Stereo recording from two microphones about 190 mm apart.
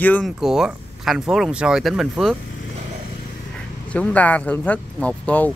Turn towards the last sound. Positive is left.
turn(degrees=5)  # may be behind; listen again after turning